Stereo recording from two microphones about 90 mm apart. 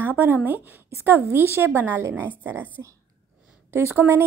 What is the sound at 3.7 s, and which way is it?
Speech, 20° right (ahead or behind).